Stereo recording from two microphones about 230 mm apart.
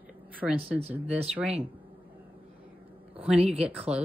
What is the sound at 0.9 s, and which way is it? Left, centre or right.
Speech, centre.